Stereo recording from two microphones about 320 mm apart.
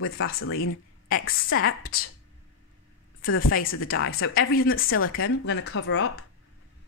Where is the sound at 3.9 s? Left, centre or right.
Left.